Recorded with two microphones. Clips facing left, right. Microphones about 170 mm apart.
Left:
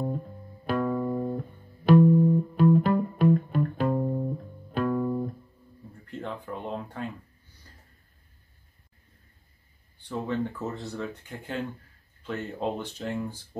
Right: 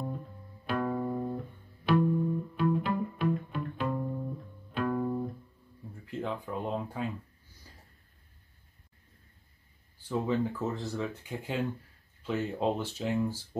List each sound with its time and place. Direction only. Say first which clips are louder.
0.7 s music: left 4 dB; 45° left (ahead or behind)
6.0 s a sound: right 1 dB; centre (ahead or behind)
10.0 s speech: even; 5° right (ahead or behind)